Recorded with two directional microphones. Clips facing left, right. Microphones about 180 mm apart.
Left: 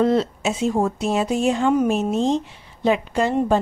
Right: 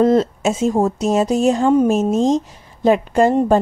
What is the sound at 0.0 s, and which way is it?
A woman's voice, 45° right (ahead or behind).